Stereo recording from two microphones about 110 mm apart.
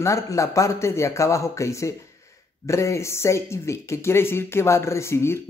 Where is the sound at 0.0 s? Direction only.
30° left (ahead or behind).